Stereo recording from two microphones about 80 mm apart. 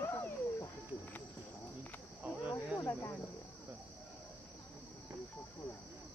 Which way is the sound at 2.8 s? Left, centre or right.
Centre.